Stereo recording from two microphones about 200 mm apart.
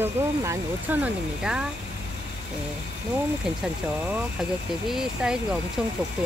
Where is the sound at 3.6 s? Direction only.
5° right (ahead or behind).